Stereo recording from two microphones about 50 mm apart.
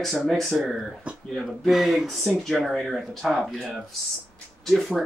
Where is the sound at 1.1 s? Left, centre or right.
Right.